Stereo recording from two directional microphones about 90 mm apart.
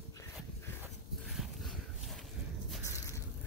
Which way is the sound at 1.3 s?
Centre (ahead or behind).